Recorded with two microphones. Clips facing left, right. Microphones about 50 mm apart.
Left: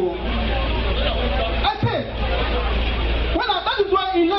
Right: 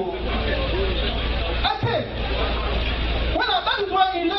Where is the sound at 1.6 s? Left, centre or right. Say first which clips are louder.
Right 1 dB; left.